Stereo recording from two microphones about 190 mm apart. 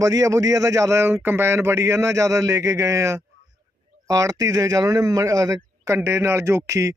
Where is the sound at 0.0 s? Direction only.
15° right (ahead or behind).